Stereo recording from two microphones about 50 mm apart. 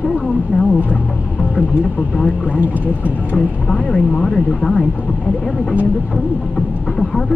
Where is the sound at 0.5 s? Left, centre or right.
Left.